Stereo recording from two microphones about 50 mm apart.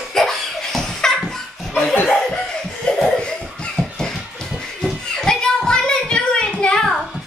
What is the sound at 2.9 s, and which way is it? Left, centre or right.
Laughter, centre.